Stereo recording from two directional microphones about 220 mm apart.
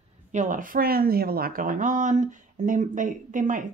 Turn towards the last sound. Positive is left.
turn(degrees=-35)  # may be behind; listen again after turning